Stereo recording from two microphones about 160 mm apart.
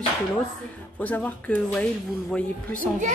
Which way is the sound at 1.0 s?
10° left (ahead or behind).